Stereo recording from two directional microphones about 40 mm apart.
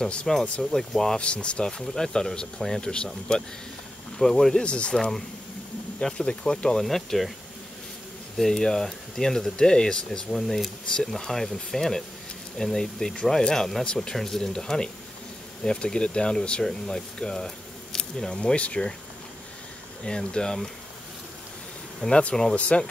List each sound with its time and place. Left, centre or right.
0.0 s speech: left
0.3 s speech: centre
1.1 s speech: left
1.7 s speech: centre
4.2 s speech: centre
4.6 s speech: left
5.9 s speech: left
6.8 s speech: centre
8.4 s speech: centre
10.3 s speech: centre; by 18.9 s left
20.1 s speech: centre
22.0 s speech: left